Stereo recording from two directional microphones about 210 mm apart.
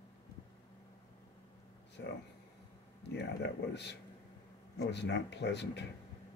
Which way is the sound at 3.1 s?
55° left (ahead or behind).